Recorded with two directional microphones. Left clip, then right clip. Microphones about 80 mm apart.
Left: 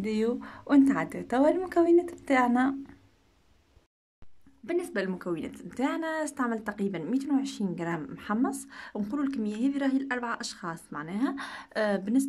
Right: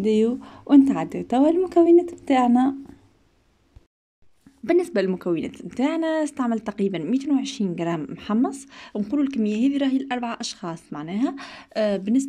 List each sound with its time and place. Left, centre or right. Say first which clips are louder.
0.0 s speech: right 8 dB; centre
4.6 s speech: right 10 dB; right
5.1 s speech: right 8 dB; right